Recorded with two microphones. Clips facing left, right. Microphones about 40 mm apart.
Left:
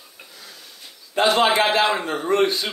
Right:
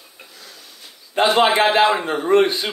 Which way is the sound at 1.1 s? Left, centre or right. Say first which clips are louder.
Right 2 dB; right.